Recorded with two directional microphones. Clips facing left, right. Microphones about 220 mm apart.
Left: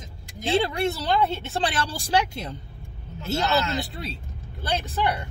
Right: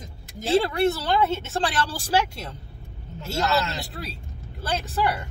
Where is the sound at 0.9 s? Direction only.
Centre (ahead or behind).